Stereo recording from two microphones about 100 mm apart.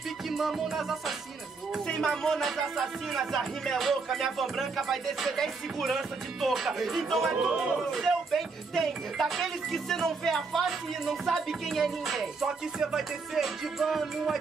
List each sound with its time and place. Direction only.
0.3 s speech: centre (ahead or behind)